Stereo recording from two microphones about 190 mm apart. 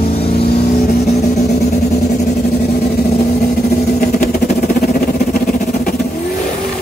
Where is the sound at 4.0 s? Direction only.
45° left (ahead or behind).